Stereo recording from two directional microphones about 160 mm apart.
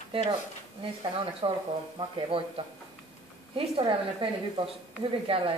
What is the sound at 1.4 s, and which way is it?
A woman's voice, 30° right (ahead or behind).